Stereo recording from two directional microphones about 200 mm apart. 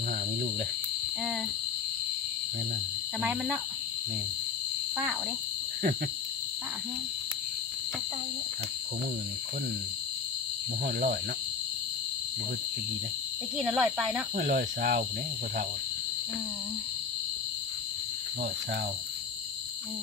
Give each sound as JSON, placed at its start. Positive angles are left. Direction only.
{"t": 3.2, "sound": "speech", "side_deg": -5}
{"t": 13.7, "sound": "speech", "side_deg": 0}
{"t": 14.3, "sound": "speech", "side_deg": -50}